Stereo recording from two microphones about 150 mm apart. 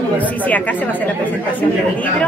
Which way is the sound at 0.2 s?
10° left (ahead or behind).